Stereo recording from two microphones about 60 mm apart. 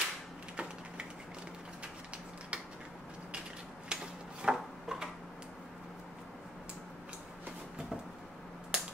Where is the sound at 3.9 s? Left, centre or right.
Centre.